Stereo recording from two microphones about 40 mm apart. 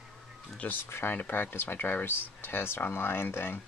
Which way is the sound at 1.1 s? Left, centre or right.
Left.